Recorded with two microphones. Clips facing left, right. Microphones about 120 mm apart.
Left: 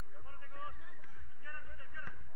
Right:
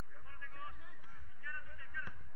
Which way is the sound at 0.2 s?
30° left (ahead or behind).